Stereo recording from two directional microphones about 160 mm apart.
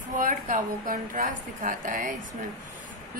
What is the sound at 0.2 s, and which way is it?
A woman's voice, 55° right (ahead or behind).